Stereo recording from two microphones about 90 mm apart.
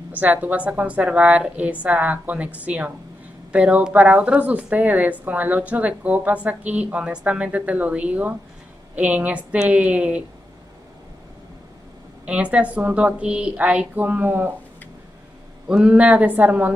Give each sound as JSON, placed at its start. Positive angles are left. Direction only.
{"t": 0.1, "sound": "a woman's voice", "side_deg": -20}
{"t": 12.3, "sound": "a woman's voice", "side_deg": -15}
{"t": 15.7, "sound": "a woman's voice", "side_deg": -15}